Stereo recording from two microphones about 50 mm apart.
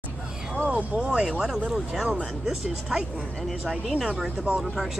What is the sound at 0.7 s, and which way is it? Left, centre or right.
Speech, right.